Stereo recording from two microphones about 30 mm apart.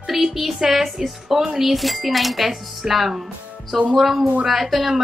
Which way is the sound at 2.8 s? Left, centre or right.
Right.